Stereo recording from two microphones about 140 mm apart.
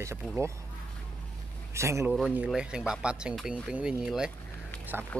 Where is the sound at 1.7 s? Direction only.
20° right (ahead or behind).